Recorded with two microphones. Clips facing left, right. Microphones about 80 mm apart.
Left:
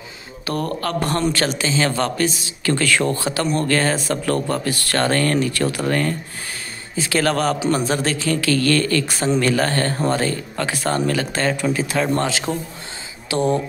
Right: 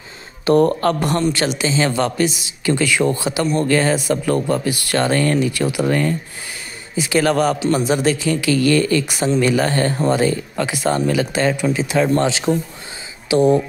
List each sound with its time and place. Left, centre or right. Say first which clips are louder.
0.5 s speech: right 9 dB; right
1.3 s a man's voice: right 2 dB; centre